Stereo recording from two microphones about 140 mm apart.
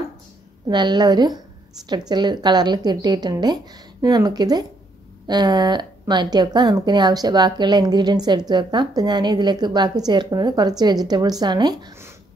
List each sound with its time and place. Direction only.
0.7 s a woman's voice: 30° right (ahead or behind)